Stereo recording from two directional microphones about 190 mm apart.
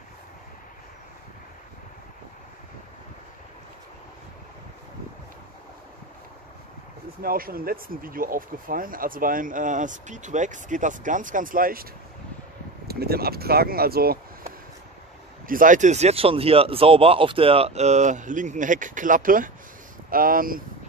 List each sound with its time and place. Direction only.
7.2 s speech: 50° right (ahead or behind)
15.4 s speech: 45° right (ahead or behind)